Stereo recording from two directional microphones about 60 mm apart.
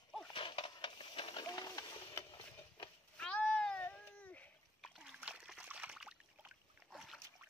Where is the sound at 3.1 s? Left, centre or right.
Centre.